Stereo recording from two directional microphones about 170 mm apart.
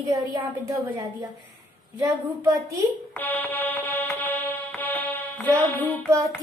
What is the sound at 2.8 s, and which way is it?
Music, 10° left (ahead or behind).